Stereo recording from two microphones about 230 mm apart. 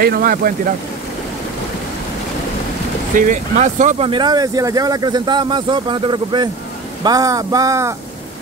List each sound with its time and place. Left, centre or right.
0.0 s speech: right
3.2 s speech: right; by 7.9 s centre